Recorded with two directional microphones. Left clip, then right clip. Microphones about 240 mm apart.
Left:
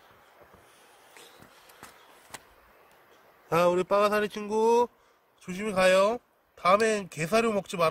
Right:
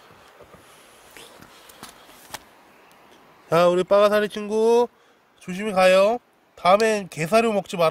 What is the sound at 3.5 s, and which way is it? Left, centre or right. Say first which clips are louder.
Speech: right 7 dB; centre.